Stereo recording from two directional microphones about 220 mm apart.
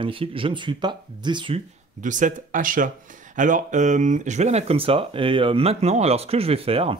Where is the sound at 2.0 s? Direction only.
35° right (ahead or behind).